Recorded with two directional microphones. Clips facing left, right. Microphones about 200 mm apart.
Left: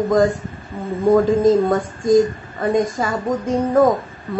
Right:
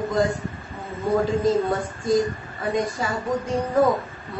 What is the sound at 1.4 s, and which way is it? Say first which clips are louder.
Speech: left 6 dB; 45° left (ahead or behind).